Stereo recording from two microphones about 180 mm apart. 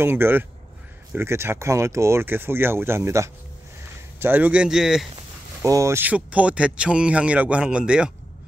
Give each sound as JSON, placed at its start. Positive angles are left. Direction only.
{"t": 0.0, "sound": "speech", "side_deg": -10}
{"t": 5.6, "sound": "speech", "side_deg": -15}